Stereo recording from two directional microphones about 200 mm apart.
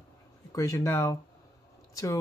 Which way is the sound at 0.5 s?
15° left (ahead or behind).